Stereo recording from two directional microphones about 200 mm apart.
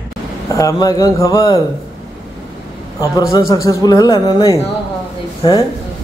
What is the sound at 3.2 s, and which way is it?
A man's voice, 15° left (ahead or behind).